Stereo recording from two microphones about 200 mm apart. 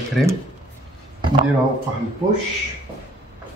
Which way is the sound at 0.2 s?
Centre (ahead or behind).